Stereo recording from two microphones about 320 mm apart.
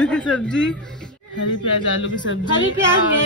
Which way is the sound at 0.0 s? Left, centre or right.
Centre.